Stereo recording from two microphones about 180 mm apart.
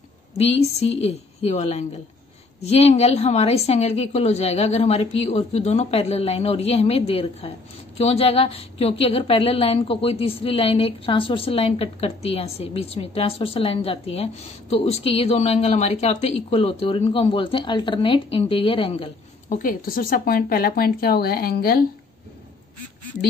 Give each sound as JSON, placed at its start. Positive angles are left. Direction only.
{"t": 0.4, "sound": "a woman's voice", "side_deg": 35}
{"t": 19.5, "sound": "speech", "side_deg": 50}